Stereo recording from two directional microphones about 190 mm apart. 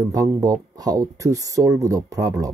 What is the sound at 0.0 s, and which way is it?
Speech, 15° right (ahead or behind).